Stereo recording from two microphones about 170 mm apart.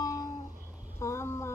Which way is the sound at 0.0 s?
20° left (ahead or behind).